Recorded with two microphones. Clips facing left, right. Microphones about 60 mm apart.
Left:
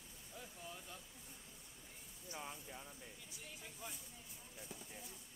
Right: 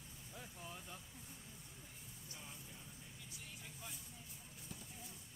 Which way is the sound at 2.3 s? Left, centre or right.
Left.